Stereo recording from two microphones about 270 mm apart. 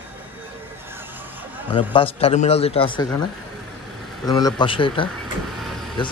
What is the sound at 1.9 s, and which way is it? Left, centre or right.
A man's voice, left.